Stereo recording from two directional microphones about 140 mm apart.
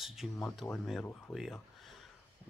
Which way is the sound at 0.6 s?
15° left (ahead or behind).